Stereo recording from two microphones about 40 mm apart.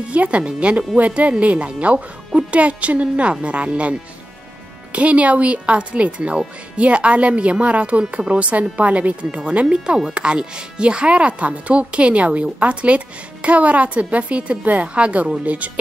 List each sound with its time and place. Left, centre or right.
0.1 s speech: right
4.9 s speech: right
15.0 s speech: right